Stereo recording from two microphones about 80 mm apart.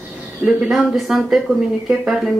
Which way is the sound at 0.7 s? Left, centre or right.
Centre.